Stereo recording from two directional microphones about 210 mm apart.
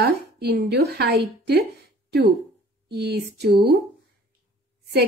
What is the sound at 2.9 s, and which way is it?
Speech, 50° right (ahead or behind).